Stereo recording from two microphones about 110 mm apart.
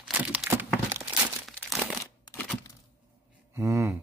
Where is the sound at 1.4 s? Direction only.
Centre (ahead or behind).